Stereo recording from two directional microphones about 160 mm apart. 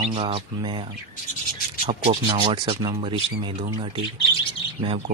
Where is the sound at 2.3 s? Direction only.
30° right (ahead or behind).